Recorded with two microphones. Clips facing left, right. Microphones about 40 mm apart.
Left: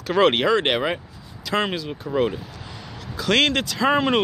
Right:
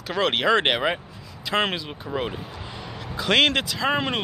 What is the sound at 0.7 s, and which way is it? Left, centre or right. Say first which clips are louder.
Speech: left 1 dB; centre.